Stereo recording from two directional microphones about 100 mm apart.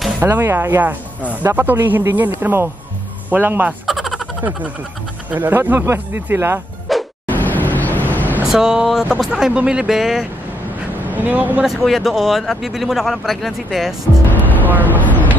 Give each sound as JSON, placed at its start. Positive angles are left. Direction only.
{"t": 0.2, "sound": "speech", "side_deg": -25}
{"t": 3.8, "sound": "a sound", "side_deg": 0}
{"t": 4.4, "sound": "speech", "side_deg": -15}
{"t": 6.9, "sound": "music", "side_deg": 0}
{"t": 7.2, "sound": "vehicle", "side_deg": 20}
{"t": 8.5, "sound": "speech", "side_deg": -5}
{"t": 11.1, "sound": "speech", "side_deg": -20}
{"t": 11.6, "sound": "speech", "side_deg": 0}
{"t": 14.9, "sound": "vehicle", "side_deg": 15}